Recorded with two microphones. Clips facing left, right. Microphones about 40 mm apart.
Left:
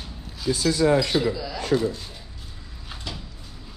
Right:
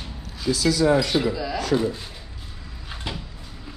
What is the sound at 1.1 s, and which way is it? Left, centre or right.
Speech, centre.